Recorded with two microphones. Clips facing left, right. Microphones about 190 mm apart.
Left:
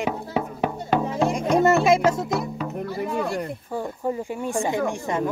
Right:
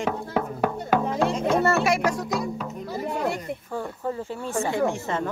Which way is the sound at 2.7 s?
60° left (ahead or behind).